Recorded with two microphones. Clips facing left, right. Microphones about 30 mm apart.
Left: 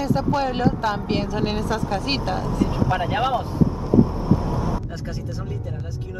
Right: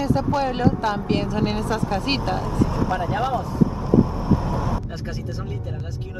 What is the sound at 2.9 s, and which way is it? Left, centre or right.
Speech, left.